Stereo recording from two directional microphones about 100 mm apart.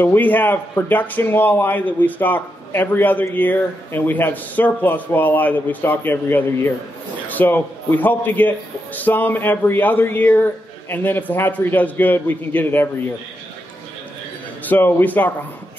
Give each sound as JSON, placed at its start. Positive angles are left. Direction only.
{"t": 0.0, "sound": "speech", "side_deg": 20}
{"t": 14.7, "sound": "a man's voice", "side_deg": 20}